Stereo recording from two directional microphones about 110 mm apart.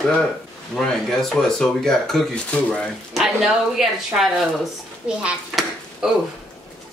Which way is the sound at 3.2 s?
5° right (ahead or behind).